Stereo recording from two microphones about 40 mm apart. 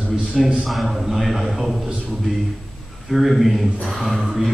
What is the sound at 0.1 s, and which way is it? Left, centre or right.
A man's voice, centre.